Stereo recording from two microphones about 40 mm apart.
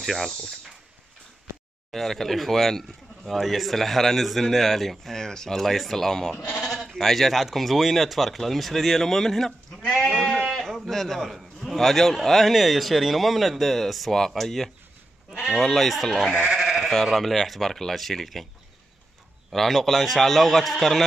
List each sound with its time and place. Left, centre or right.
0.0 s speech: centre
0.3 s speech: centre
1.9 s speech: centre
10.3 s sheep: centre
11.2 s speech: centre
15.3 s speech: centre
15.6 s speech: centre
19.5 s speech: centre